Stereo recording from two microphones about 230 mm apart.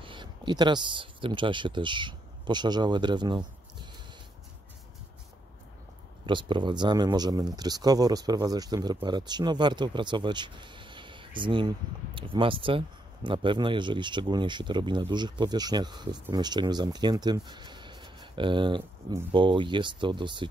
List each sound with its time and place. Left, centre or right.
0.0 s speech: right
6.2 s speech: right